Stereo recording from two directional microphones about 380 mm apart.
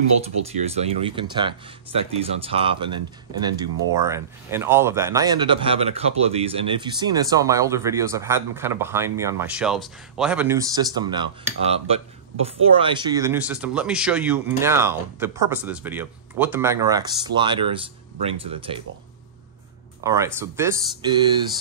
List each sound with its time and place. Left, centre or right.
0.2 s speech: centre
20.0 s speech: centre